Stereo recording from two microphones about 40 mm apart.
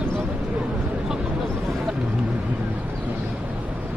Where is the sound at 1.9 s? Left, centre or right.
Centre.